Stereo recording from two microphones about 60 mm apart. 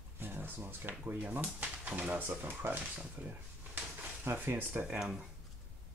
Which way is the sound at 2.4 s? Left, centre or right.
Right.